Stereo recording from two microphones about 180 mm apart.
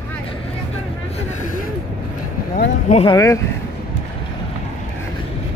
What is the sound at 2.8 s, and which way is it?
Speech, 35° left (ahead or behind).